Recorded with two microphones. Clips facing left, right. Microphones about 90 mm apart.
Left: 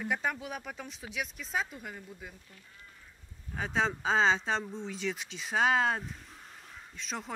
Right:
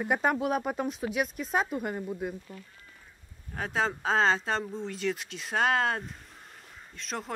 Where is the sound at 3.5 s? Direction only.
Centre (ahead or behind).